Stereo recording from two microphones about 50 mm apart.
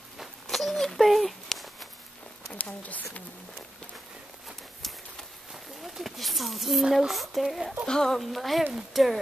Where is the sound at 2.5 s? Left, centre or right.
Left.